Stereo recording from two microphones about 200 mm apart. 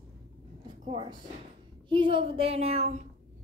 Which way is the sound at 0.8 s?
25° right (ahead or behind).